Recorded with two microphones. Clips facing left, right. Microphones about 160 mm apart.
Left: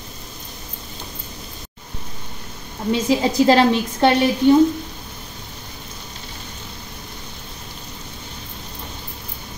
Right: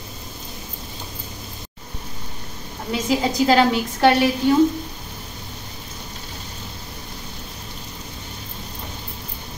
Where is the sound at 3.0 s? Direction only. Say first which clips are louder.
Left 2 dB; 30° left (ahead or behind).